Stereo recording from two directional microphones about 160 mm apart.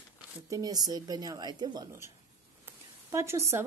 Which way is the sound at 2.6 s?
15° right (ahead or behind).